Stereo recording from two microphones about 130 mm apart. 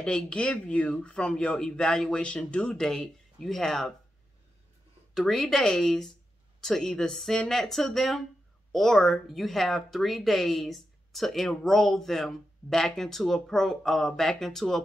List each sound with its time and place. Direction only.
0.0 s speech: 5° left (ahead or behind)
5.1 s speech: centre (ahead or behind)